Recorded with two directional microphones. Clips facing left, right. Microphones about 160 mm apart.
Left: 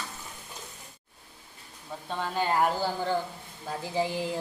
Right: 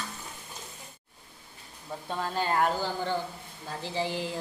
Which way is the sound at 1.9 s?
5° right (ahead or behind).